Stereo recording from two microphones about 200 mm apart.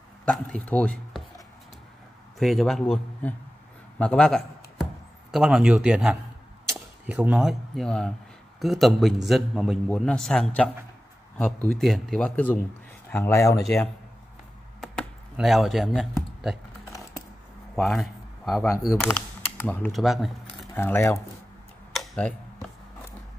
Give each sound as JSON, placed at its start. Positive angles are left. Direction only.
{"t": 0.2, "sound": "speech", "side_deg": 5}
{"t": 2.3, "sound": "a man's voice", "side_deg": 0}
{"t": 13.6, "sound": "a man's voice", "side_deg": 0}
{"t": 14.8, "sound": "a sound", "side_deg": 0}
{"t": 17.7, "sound": "a man's voice", "side_deg": 0}
{"t": 18.7, "sound": "a man's voice", "side_deg": 15}
{"t": 20.7, "sound": "speech", "side_deg": 10}
{"t": 21.9, "sound": "a sound", "side_deg": 5}